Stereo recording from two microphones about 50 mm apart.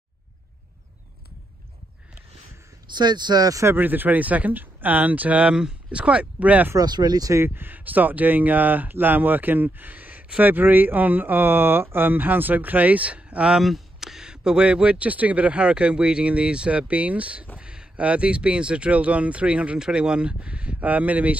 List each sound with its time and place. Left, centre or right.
3.7 s speech: right
5.4 s speech: centre
7.3 s speech: right
13.6 s speech: centre; by 20.7 s right
20.8 s speech: right